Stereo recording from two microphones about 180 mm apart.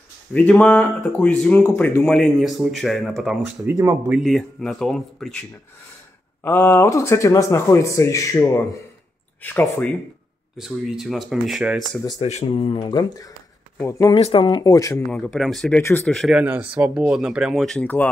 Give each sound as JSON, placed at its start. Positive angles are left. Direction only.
{"t": 0.3, "sound": "speech", "side_deg": 5}
{"t": 3.6, "sound": "speech", "side_deg": -15}
{"t": 4.1, "sound": "speech", "side_deg": 0}
{"t": 6.4, "sound": "speech", "side_deg": 10}
{"t": 10.6, "sound": "speech", "side_deg": 0}
{"t": 12.2, "sound": "speech", "side_deg": 35}
{"t": 14.1, "sound": "speech", "side_deg": 30}
{"t": 15.0, "sound": "speech", "side_deg": 5}
{"t": 16.2, "sound": "speech", "side_deg": -5}